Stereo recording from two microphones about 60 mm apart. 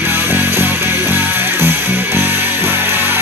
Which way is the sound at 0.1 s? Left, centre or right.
Right.